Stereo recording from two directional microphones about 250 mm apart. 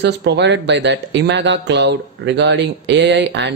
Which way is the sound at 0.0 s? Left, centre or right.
Right.